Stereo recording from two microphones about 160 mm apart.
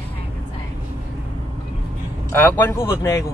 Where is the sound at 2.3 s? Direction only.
15° left (ahead or behind).